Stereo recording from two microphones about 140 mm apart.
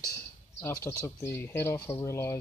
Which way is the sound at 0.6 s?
20° left (ahead or behind).